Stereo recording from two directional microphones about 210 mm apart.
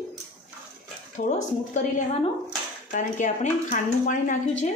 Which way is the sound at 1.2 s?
40° left (ahead or behind).